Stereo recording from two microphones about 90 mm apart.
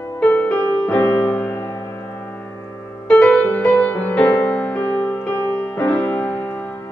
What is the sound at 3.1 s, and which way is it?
Music, 15° left (ahead or behind).